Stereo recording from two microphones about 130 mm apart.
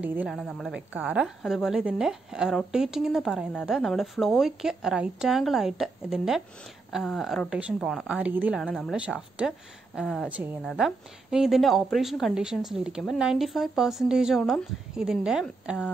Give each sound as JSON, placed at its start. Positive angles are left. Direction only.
{"t": 0.0, "sound": "speech", "side_deg": -15}
{"t": 0.3, "sound": "a woman's voice", "side_deg": 0}
{"t": 0.7, "sound": "a woman's voice", "side_deg": -10}
{"t": 8.6, "sound": "a woman's voice", "side_deg": 5}
{"t": 8.9, "sound": "a woman's voice", "side_deg": -10}
{"t": 10.3, "sound": "speech", "side_deg": -15}
{"t": 10.6, "sound": "a woman's voice", "side_deg": 0}